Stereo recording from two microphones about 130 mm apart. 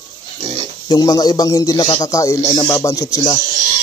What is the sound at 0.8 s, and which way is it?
Speech, 30° left (ahead or behind).